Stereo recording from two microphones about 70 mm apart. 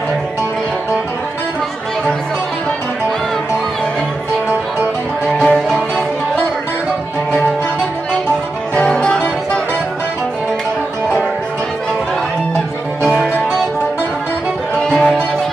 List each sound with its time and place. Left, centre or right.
5.2 s music: centre
8.7 s music: centre
14.9 s music: centre